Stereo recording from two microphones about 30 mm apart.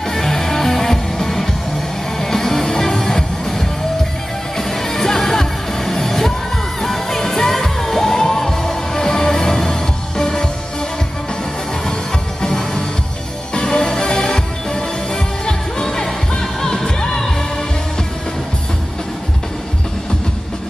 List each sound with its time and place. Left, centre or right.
0.1 s music: centre
12.4 s music: left